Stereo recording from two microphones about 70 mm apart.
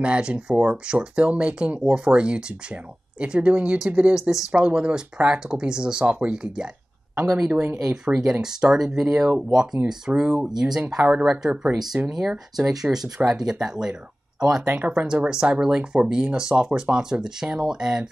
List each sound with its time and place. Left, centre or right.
0.0 s speech: centre
4.1 s speech: centre
4.5 s speech: centre
8.1 s speech: right
8.4 s speech: centre